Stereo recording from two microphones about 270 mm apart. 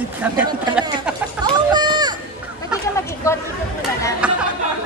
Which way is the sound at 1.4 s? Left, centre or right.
Centre.